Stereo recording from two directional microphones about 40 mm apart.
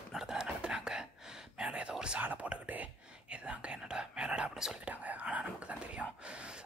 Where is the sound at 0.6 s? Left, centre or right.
Centre.